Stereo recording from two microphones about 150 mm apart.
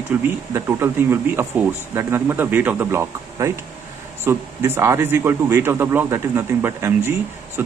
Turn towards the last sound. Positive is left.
turn(degrees=-15)  # may be behind; listen again after turning